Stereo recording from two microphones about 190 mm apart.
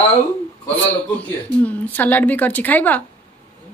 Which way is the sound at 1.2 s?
10° left (ahead or behind).